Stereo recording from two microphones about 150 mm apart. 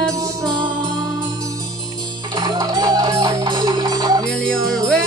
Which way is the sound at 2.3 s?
25° right (ahead or behind).